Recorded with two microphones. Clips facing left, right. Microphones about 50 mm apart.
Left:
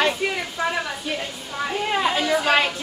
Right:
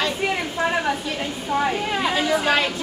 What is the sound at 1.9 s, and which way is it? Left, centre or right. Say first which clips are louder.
Speech: left 1 dB; centre.